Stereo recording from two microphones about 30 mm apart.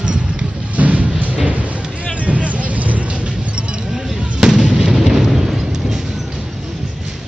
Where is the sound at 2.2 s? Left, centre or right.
Right.